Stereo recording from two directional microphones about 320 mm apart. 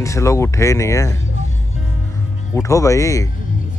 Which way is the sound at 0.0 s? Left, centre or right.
Centre.